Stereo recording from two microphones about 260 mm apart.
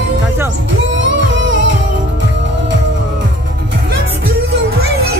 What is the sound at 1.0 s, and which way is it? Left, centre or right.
Music, right.